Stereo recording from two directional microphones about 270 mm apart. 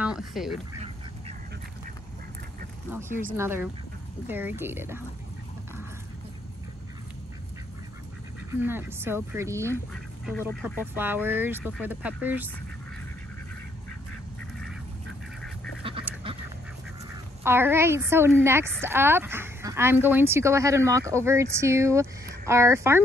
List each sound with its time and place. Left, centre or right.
0.0 s speech: centre
2.9 s a woman's voice: centre
8.5 s a woman's voice: centre
10.4 s a woman's voice: centre
15.8 s duck: centre
17.4 s a woman's voice: centre